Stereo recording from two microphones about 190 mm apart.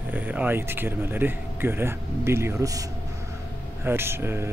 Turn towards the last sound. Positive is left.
turn(degrees=-10)  # may be behind; listen again after turning